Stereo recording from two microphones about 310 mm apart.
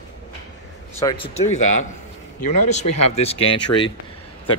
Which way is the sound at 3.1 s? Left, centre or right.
Centre.